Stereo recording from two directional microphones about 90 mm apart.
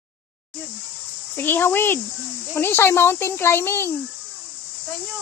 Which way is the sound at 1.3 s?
25° left (ahead or behind).